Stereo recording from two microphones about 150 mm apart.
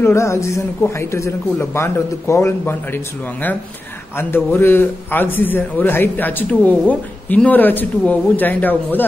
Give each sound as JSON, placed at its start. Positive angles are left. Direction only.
{"t": 0.0, "sound": "a man's voice", "side_deg": 20}
{"t": 4.2, "sound": "a man's voice", "side_deg": 15}